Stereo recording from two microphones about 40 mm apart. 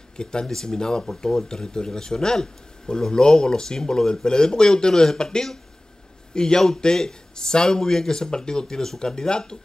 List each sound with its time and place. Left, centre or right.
0.2 s speech: centre